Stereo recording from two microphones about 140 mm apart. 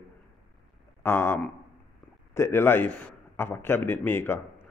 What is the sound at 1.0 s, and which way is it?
A man's voice, 15° left (ahead or behind).